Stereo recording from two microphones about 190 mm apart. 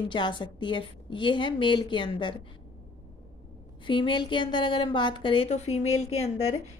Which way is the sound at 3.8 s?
25° left (ahead or behind).